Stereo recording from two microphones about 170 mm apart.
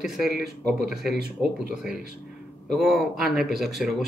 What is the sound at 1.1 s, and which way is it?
Speech, 70° right (ahead or behind).